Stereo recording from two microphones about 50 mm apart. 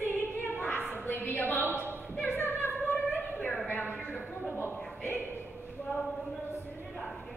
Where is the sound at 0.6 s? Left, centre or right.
Left.